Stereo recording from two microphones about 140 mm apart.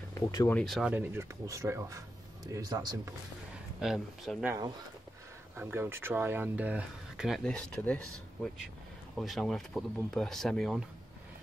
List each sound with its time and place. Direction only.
0.1 s speech: 25° left (ahead or behind)
0.6 s speech: centre (ahead or behind)
0.9 s speech: 20° right (ahead or behind)
3.8 s speech: centre (ahead or behind)
5.6 s speech: 15° right (ahead or behind); by 10.8 s 5° left (ahead or behind)